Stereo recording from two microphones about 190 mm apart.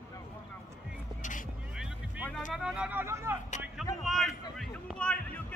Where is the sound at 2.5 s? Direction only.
5° right (ahead or behind).